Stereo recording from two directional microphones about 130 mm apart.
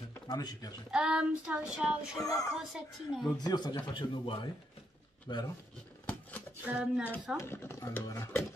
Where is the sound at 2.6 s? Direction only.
5° right (ahead or behind).